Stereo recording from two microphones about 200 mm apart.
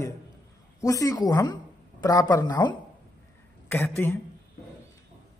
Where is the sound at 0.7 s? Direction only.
15° left (ahead or behind).